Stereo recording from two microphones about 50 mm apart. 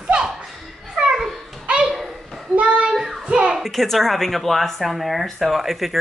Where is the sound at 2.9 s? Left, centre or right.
Centre.